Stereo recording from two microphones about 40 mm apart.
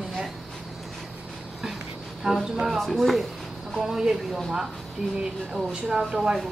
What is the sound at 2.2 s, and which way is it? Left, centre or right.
Speech, centre.